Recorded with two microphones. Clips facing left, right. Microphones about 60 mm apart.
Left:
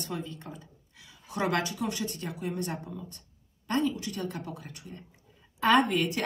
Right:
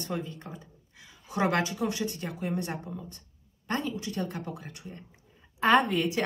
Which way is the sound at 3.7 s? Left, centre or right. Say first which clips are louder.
Left 3 dB; right.